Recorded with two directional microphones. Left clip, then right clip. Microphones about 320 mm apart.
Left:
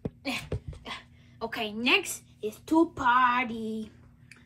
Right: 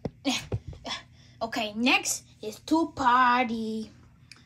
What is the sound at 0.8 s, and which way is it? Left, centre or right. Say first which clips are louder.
A woman's voice: right 4 dB; centre.